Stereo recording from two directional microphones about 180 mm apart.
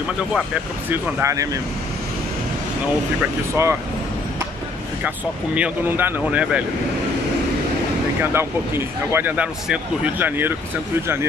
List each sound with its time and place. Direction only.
0.8 s speech: 15° right (ahead or behind)
3.2 s speech: 15° right (ahead or behind)
5.0 s speech: 10° right (ahead or behind)
8.2 s speech: 15° right (ahead or behind)